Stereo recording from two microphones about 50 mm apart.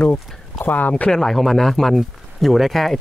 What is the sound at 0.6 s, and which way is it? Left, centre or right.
Speech, left.